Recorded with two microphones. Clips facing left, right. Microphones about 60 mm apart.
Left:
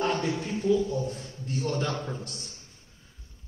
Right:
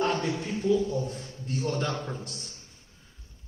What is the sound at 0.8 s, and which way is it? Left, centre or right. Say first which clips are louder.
Speech: even; centre.